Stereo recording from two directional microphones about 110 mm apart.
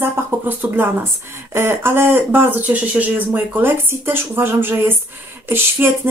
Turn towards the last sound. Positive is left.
turn(degrees=-20)  # may be behind; listen again after turning